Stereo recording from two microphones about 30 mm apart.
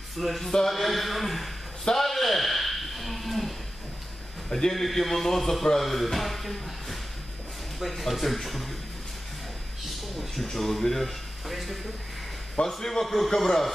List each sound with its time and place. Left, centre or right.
0.2 s speech: centre
2.0 s a sound: centre
4.5 s a man's voice: centre
4.7 s music: centre
5.8 s speech: centre
7.8 s music: centre
8.1 s speech: centre
9.8 s speech: centre
12.6 s a man's voice: left
13.0 s speech: centre
13.3 s music: centre